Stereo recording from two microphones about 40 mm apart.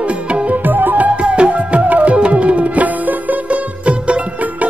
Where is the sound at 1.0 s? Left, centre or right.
Right.